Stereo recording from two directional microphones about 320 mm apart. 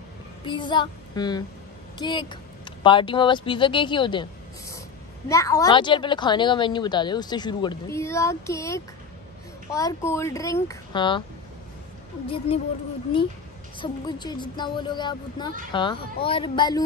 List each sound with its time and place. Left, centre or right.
0.5 s a woman's voice: centre
13.7 s a woman's voice: centre